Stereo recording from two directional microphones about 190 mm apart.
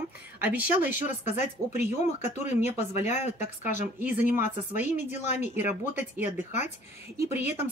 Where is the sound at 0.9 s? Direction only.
40° left (ahead or behind).